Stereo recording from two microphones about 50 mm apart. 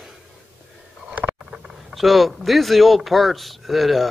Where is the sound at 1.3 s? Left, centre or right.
Centre.